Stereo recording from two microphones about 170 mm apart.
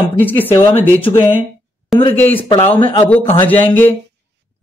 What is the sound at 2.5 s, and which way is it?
Speech, 30° left (ahead or behind).